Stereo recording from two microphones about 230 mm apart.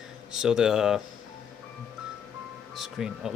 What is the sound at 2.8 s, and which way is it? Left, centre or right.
Speech, centre.